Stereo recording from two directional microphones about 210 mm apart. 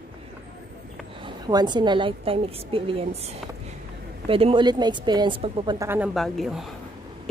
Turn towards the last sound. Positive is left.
turn(degrees=0)  # may be behind; listen again after turning